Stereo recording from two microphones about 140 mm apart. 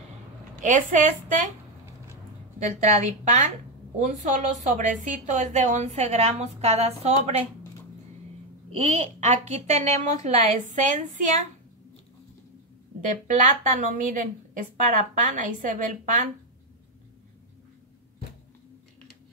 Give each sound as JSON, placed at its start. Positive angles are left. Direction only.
{"t": 0.6, "sound": "a woman's voice", "side_deg": -65}
{"t": 2.6, "sound": "a woman's voice", "side_deg": -55}
{"t": 8.7, "sound": "a woman's voice", "side_deg": -50}
{"t": 13.0, "sound": "a woman's voice", "side_deg": -65}